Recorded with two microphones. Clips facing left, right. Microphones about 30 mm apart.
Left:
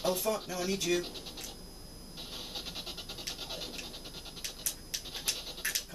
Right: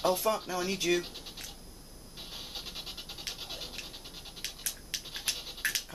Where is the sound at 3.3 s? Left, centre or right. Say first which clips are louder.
Even; centre.